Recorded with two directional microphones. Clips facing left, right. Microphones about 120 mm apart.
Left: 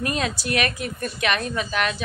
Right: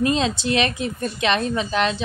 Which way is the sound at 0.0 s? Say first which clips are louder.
Right 5 dB; 25° right (ahead or behind).